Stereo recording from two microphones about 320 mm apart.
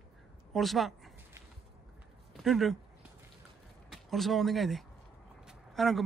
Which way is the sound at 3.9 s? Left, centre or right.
Centre.